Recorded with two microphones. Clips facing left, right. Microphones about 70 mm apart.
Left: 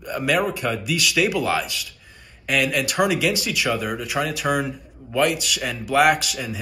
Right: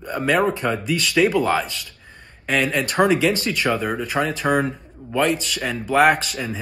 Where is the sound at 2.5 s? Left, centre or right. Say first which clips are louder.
Right 1 dB; right.